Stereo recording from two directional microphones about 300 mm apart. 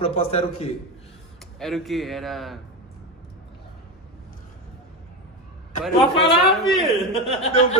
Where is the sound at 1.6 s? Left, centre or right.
Centre.